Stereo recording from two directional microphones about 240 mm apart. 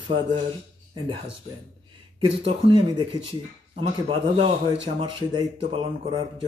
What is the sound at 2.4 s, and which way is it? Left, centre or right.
Speech, right.